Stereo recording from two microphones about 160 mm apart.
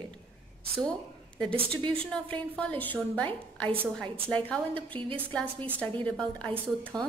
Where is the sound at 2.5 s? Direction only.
10° left (ahead or behind).